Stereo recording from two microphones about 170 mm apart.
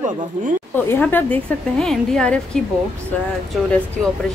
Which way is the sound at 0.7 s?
10° left (ahead or behind).